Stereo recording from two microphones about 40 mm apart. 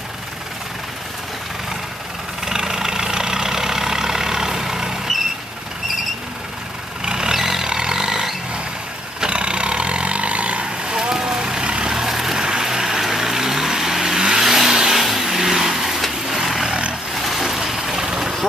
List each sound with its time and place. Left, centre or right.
2.4 s vehicle: centre
7.1 s vehicle: centre
7.4 s a sound: centre
9.2 s vehicle: right
16.4 s a sound: centre
17.1 s vehicle: centre